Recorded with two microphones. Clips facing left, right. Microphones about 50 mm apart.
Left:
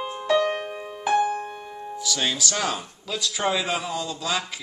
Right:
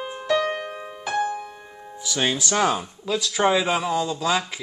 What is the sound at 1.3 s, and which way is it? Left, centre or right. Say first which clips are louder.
Piano: left 2 dB; left.